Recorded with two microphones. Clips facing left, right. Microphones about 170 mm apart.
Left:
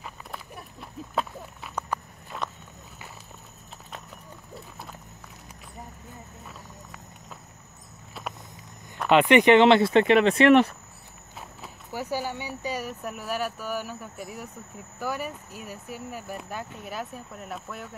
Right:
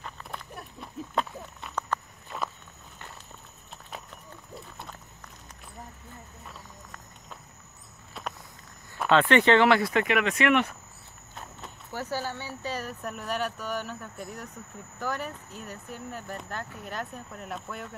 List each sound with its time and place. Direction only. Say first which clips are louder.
0.0 s a sound: even; centre (ahead or behind)
2.3 s walk: even; 5° right (ahead or behind)
6.4 s run: left 2 dB; 5° left (ahead or behind)
8.1 s walk: left 1 dB; 5° left (ahead or behind)
9.1 s speech: left 4 dB; 15° left (ahead or behind); by 10.7 s 35° left (ahead or behind)
11.3 s speech: even; 10° left (ahead or behind)